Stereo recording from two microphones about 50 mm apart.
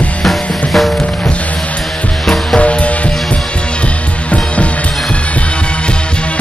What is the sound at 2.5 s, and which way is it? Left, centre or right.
Music, left.